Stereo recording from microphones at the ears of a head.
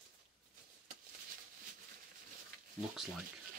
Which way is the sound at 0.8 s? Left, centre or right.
Right.